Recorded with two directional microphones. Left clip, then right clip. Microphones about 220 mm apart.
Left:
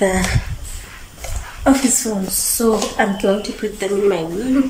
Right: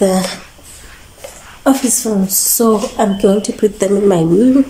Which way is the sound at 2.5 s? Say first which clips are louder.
Right 3 dB; 20° right (ahead or behind).